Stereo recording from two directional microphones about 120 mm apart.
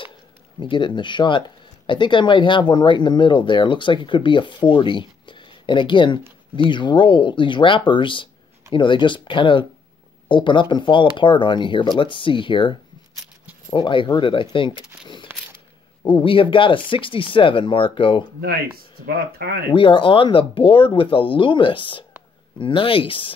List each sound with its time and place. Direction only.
0.6 s speech: 40° left (ahead or behind)
13.7 s speech: 40° left (ahead or behind)
15.3 s a sound: 15° right (ahead or behind)
16.1 s speech: 45° left (ahead or behind)
19.7 s speech: 45° left (ahead or behind)